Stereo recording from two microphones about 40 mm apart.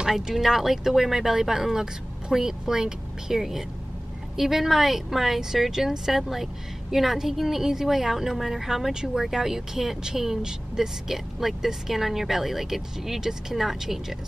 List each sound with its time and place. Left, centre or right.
0.0 s speech: centre